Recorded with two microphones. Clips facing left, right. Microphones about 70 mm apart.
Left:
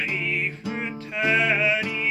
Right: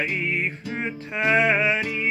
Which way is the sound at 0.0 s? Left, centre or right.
Right.